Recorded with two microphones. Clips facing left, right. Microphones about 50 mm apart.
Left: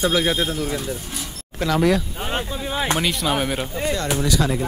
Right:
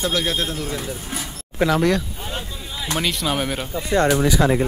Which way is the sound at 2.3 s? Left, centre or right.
Left.